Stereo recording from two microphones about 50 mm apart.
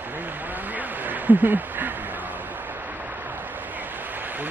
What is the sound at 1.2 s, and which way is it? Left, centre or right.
Speech, right.